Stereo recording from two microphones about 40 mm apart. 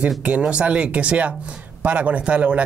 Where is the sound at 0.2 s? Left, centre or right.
Right.